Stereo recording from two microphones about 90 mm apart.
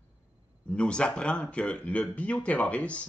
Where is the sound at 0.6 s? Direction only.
10° left (ahead or behind).